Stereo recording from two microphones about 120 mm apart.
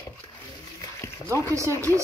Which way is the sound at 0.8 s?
25° left (ahead or behind).